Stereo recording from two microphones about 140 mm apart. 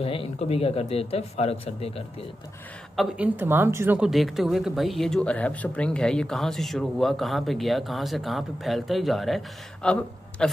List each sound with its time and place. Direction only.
0.0 s speech: 40° left (ahead or behind)
3.0 s a woman's voice: 10° right (ahead or behind)
4.0 s a man's voice: centre (ahead or behind)